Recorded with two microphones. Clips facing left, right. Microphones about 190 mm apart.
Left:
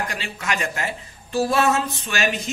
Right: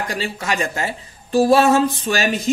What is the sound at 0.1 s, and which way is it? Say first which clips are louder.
Speech: right 5 dB; 35° right (ahead or behind).